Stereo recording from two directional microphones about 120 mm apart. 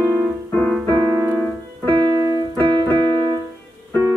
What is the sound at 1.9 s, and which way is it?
Keyboard, 40° right (ahead or behind).